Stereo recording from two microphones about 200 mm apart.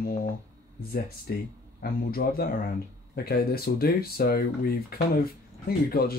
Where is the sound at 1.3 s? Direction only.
50° left (ahead or behind).